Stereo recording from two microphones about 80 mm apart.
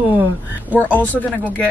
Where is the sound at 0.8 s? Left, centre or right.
Left.